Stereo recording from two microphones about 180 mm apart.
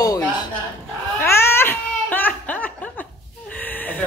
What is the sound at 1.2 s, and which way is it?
Crying, 15° left (ahead or behind).